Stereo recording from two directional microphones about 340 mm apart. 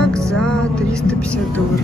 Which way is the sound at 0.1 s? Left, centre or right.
Centre.